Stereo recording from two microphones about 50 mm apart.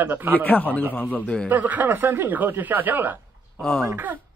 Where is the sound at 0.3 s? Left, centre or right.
Left.